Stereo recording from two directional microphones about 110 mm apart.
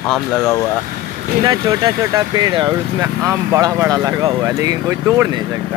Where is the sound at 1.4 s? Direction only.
35° right (ahead or behind).